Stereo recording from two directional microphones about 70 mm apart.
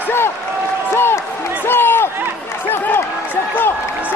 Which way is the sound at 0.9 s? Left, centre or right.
Left.